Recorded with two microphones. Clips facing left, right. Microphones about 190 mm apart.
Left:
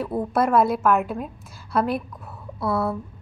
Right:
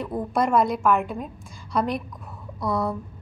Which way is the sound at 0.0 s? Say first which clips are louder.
Left 2 dB; 5° left (ahead or behind).